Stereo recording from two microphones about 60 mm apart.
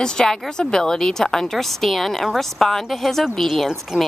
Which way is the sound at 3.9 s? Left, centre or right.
Centre.